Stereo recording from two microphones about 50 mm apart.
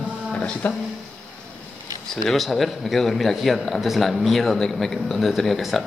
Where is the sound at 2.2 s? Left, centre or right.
Centre.